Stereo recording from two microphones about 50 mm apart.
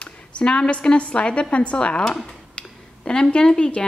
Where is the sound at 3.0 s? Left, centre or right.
Centre.